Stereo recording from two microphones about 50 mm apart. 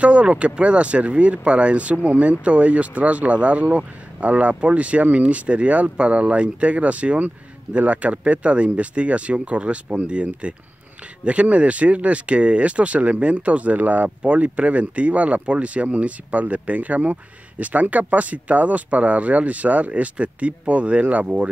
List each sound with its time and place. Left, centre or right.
0.0 s speech: right